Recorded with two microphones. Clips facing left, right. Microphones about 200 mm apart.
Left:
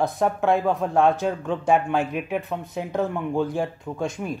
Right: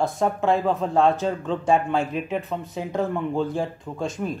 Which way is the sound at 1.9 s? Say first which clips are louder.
Even; centre (ahead or behind).